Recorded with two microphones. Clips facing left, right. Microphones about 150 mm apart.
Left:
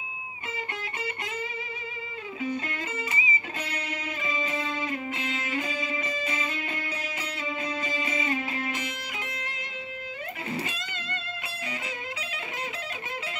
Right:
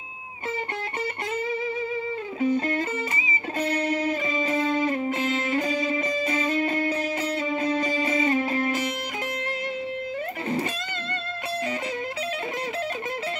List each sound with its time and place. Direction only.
2.4 s music: 40° right (ahead or behind)